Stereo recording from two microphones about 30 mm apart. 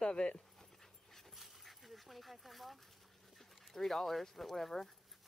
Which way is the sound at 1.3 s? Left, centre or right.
Centre.